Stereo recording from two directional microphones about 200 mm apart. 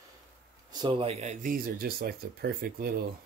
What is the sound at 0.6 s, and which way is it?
Speech, 25° right (ahead or behind).